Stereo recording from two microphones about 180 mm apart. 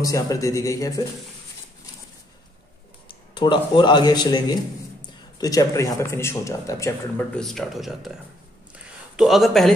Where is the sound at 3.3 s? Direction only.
25° left (ahead or behind).